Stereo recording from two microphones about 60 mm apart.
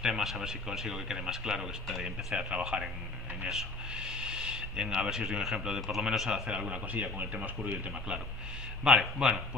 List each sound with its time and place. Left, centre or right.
0.0 s speech: centre
2.3 s a man's voice: centre
6.5 s speech: centre